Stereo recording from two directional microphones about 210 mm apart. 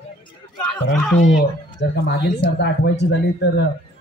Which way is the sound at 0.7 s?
5° left (ahead or behind).